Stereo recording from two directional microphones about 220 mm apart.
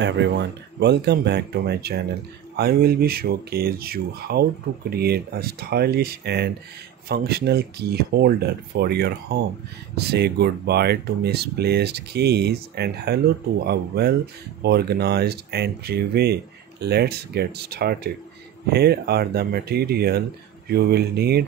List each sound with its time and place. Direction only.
0.0 s speech: 55° right (ahead or behind)